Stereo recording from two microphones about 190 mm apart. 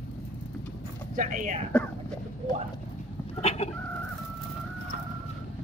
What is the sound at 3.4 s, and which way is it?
Chicken, 35° left (ahead or behind).